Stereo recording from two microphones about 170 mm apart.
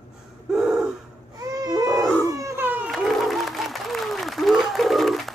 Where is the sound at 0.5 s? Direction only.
Centre (ahead or behind).